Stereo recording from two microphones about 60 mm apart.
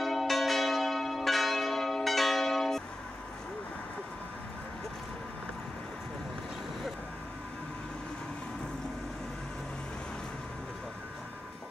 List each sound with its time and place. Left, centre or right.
0.0 s church bell: centre